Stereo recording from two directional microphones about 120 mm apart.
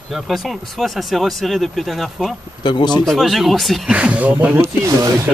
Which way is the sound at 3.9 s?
10° right (ahead or behind).